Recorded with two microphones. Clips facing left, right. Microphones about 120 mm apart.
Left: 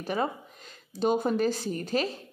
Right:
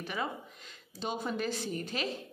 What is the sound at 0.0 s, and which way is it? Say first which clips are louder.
A woman's voice: left 7 dB; 40° left (ahead or behind).